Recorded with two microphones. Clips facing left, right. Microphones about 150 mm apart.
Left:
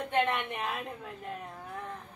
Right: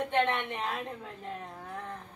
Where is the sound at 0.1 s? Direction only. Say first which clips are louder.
Left 2 dB; 5° left (ahead or behind).